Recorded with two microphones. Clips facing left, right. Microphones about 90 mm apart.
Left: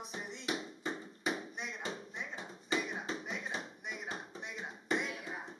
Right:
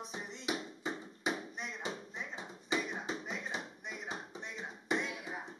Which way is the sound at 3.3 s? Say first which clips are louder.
Even; 5° left (ahead or behind).